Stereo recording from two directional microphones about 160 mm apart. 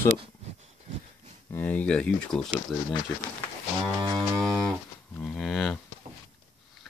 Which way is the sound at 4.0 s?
30° right (ahead or behind).